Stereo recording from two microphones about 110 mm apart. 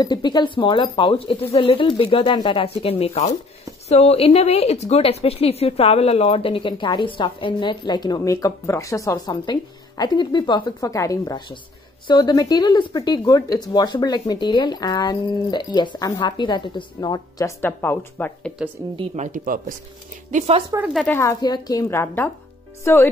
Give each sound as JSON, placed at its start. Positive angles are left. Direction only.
{"t": 0.0, "sound": "speech", "side_deg": 40}
{"t": 2.6, "sound": "a woman's voice", "side_deg": 60}
{"t": 8.2, "sound": "speech", "side_deg": 30}
{"t": 10.8, "sound": "speech", "side_deg": 30}
{"t": 17.6, "sound": "speech", "side_deg": 20}
{"t": 20.2, "sound": "speech", "side_deg": -90}
{"t": 21.4, "sound": "a woman's voice", "side_deg": 35}